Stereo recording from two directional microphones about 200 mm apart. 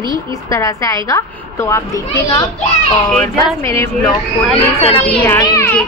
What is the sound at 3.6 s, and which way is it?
Speech, 15° left (ahead or behind).